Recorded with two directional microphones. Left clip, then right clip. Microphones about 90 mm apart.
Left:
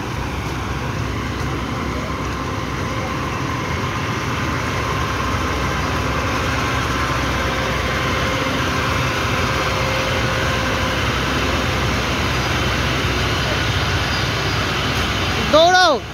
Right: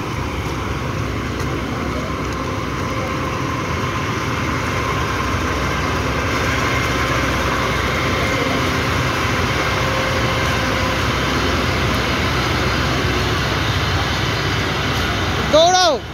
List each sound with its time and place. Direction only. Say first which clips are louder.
15.5 s vehicle: left 1 dB; 75° left (ahead or behind)